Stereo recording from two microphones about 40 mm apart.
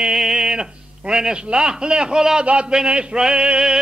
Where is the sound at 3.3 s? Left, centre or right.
Right.